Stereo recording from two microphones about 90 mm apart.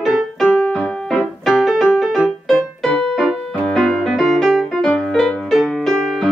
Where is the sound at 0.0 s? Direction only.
5° right (ahead or behind).